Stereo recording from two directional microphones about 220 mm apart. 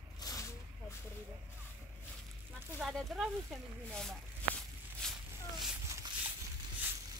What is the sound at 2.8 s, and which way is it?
Speech, centre (ahead or behind).